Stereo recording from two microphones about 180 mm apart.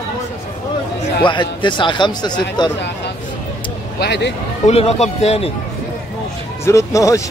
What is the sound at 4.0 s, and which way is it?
Speech, 70° left (ahead or behind).